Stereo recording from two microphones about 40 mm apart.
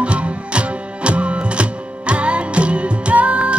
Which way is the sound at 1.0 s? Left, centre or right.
Right.